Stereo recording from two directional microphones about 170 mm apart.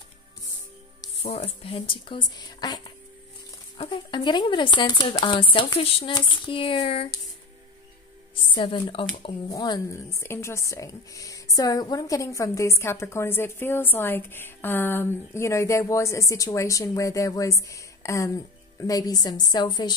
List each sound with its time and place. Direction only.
1.2 s a woman's voice: 40° left (ahead or behind)
8.5 s a woman's voice: 30° left (ahead or behind)